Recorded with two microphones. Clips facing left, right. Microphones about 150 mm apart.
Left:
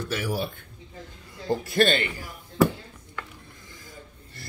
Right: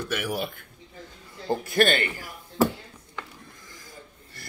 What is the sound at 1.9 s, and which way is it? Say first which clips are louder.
Speech: even; 20° left (ahead or behind).